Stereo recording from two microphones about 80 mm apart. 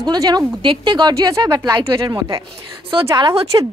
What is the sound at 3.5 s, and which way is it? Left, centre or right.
Speech, right.